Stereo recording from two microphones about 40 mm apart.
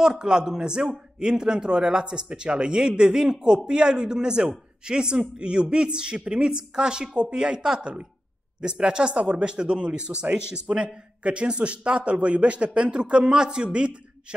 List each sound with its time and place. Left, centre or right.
0.0 s a man's voice: centre